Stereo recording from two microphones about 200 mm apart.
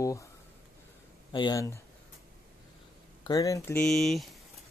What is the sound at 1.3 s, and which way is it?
Mantra, 20° left (ahead or behind).